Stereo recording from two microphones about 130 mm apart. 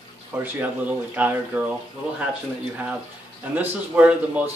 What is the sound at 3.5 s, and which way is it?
Speech, 15° right (ahead or behind).